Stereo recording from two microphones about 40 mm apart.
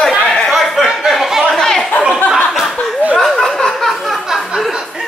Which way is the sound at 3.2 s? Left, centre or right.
Centre.